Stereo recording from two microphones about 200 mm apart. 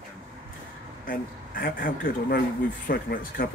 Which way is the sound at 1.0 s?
45° left (ahead or behind).